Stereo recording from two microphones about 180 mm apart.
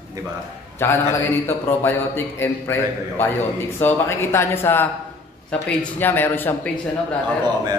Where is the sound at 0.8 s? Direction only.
15° left (ahead or behind).